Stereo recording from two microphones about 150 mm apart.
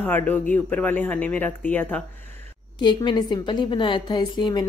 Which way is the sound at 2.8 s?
30° left (ahead or behind).